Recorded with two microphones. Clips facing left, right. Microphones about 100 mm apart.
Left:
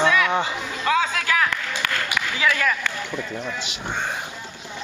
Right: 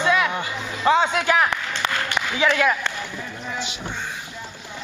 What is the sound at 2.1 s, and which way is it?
Speech, 25° right (ahead or behind).